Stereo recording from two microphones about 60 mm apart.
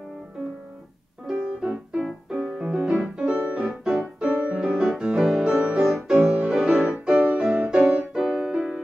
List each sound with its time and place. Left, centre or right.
1.2 s music: centre
2.0 s piano: centre
3.6 s piano: right
4.3 s music: centre